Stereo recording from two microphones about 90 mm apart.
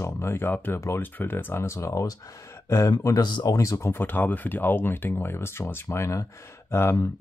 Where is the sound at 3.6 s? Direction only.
30° left (ahead or behind).